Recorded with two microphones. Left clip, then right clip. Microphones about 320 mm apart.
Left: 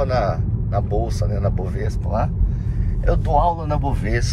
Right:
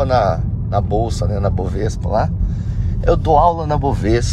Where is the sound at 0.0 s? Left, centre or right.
Centre.